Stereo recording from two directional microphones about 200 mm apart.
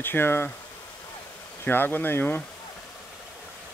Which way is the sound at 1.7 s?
10° left (ahead or behind).